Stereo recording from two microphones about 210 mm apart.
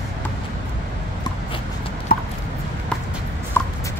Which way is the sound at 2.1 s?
45° left (ahead or behind).